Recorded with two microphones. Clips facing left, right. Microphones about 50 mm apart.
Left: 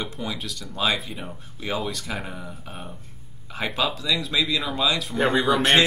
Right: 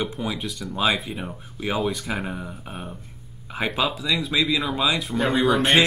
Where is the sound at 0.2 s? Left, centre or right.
Centre.